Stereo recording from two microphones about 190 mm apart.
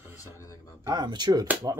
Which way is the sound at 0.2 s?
15° left (ahead or behind).